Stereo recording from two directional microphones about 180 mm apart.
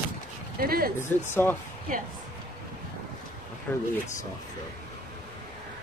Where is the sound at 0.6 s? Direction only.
55° right (ahead or behind).